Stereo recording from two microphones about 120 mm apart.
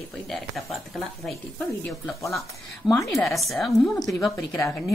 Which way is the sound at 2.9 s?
Centre (ahead or behind).